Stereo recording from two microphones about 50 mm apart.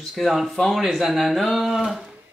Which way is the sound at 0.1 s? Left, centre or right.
Centre.